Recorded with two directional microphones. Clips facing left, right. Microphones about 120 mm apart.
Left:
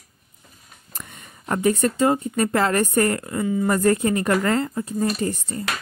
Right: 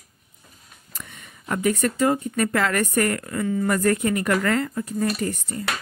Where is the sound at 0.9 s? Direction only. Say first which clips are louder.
Left 1 dB; 40° left (ahead or behind).